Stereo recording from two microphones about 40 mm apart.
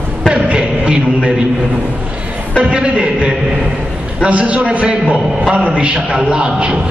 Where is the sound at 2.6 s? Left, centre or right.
Right.